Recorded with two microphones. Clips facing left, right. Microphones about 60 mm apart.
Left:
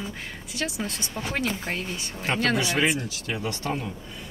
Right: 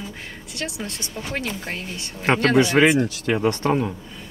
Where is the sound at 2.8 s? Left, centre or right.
Right.